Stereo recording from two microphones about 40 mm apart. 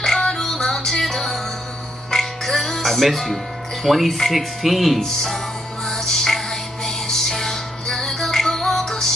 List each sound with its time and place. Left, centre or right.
0.2 s music: centre
3.8 s speech: centre
5.9 s music: centre